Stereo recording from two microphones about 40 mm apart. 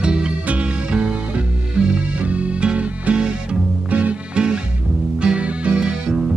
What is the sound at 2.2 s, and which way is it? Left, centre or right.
Music, right.